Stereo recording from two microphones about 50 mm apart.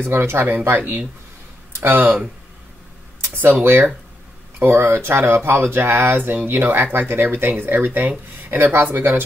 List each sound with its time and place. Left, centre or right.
0.0 s speech: right
3.3 s speech: right